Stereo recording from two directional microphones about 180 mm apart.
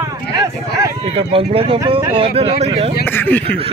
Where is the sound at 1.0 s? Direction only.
30° right (ahead or behind).